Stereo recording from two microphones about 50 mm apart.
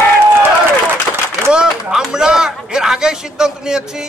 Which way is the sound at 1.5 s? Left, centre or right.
Centre.